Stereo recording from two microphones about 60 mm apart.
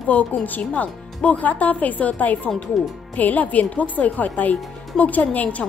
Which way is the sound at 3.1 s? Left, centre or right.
Left.